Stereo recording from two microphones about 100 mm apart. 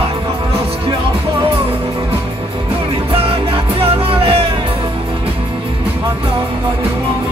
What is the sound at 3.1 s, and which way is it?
Music, 70° right (ahead or behind).